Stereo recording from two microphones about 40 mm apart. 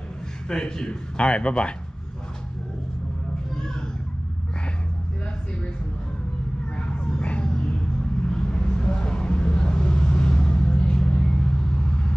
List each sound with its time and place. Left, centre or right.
0.5 s speech: centre
6.8 s a sound: left
8.2 s vehicle: centre